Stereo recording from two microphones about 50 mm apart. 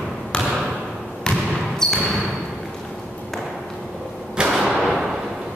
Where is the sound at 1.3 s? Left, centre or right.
Left.